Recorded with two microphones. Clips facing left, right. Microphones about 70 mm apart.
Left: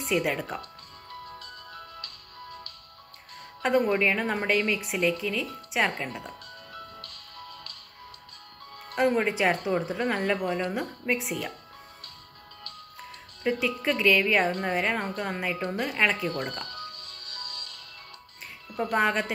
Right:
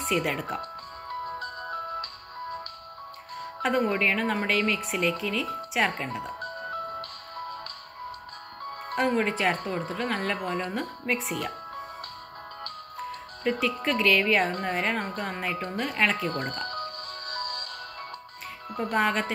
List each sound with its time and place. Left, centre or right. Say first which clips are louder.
0.1 s speech: left 1 dB; centre
0.6 s music: right 7 dB; right
3.6 s speech: left 2 dB; centre
6.4 s music: right 10 dB; right
8.9 s speech: left 1 dB; centre
13.4 s speech: even; centre
16.3 s music: right 1 dB; right
18.8 s speech: even; centre